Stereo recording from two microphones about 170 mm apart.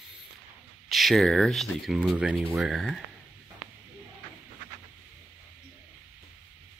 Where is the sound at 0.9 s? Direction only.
Centre (ahead or behind).